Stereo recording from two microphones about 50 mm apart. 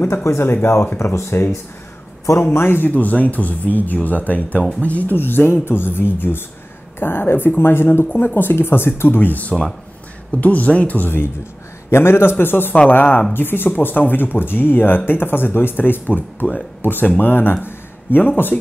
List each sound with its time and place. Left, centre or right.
0.0 s speech: left
0.9 s speech: left
2.5 s speech: left
2.9 s speech: left
5.1 s speech: left
8.1 s speech: left
9.4 s speech: left
11.0 s speech: left
11.9 s speech: left